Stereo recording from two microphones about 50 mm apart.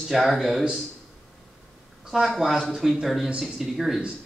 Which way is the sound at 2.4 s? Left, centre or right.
Centre.